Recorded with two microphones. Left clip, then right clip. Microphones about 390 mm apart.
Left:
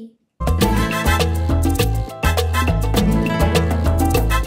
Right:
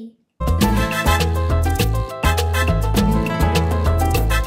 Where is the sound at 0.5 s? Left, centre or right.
Left.